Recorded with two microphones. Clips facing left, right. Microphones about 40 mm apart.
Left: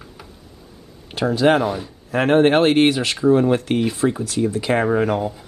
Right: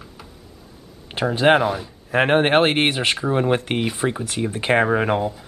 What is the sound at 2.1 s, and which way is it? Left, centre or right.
Speech, right.